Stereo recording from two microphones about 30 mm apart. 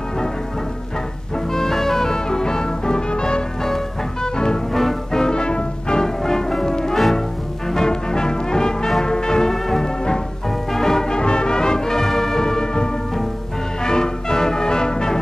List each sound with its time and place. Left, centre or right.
1.5 s music: centre
3.6 s music: centre
5.2 s music: left
5.9 s music: centre
11.1 s music: left